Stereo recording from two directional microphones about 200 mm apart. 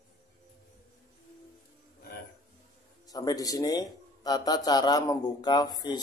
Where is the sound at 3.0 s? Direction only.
20° left (ahead or behind).